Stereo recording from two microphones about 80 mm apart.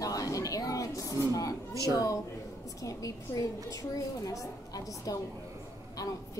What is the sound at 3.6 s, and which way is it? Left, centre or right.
A woman's voice, left.